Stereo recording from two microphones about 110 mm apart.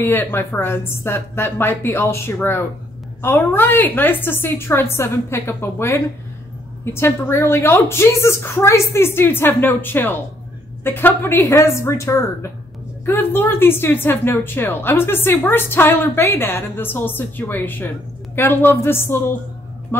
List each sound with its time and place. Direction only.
0.0 s a woman's voice: 20° left (ahead or behind)